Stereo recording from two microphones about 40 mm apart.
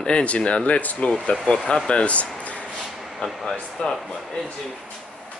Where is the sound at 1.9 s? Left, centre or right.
Left.